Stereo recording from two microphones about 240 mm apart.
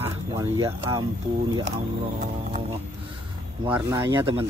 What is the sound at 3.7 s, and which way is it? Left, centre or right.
Speech, centre.